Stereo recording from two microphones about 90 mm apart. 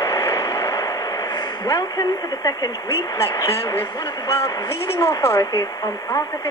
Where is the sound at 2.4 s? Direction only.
45° left (ahead or behind).